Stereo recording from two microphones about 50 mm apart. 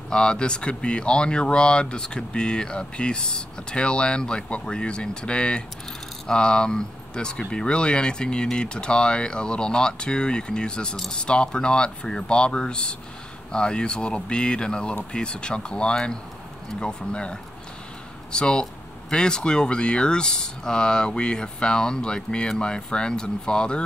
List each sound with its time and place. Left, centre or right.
0.1 s speech: centre